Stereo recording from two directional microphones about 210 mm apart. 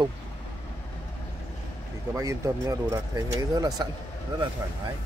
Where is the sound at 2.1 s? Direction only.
15° right (ahead or behind).